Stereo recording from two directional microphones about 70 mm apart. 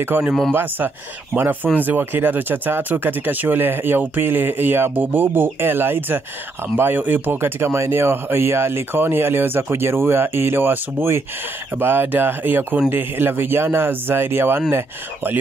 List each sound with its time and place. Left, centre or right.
0.1 s speech: right